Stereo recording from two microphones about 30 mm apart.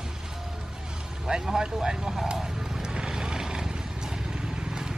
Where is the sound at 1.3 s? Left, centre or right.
Right.